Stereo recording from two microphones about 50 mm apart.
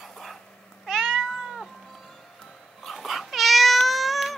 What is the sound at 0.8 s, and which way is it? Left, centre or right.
Cat, centre.